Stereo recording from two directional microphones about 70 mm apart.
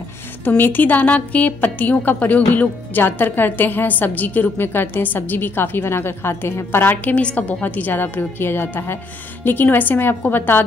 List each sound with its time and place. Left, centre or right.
0.5 s a woman's voice: left
7.2 s a woman's voice: centre